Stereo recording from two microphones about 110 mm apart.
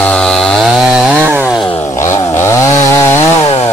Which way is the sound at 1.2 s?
20° right (ahead or behind).